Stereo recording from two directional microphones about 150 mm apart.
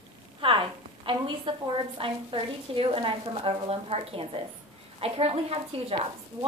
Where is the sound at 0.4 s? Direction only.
35° right (ahead or behind).